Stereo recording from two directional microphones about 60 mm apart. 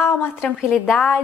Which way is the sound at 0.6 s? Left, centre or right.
Centre.